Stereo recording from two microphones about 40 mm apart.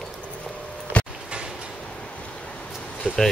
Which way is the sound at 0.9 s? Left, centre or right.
Left.